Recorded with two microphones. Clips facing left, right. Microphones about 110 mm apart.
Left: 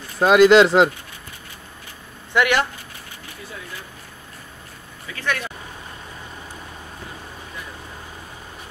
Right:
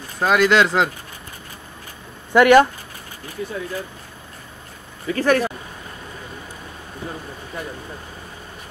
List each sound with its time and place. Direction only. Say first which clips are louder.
0.2 s speech: left 4 dB; 10° left (ahead or behind)
2.3 s speech: right 8 dB; 40° right (ahead or behind)
5.0 s speech: right 9 dB; 40° right (ahead or behind)